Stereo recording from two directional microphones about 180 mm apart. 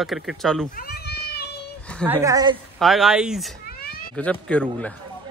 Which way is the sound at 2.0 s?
15° right (ahead or behind).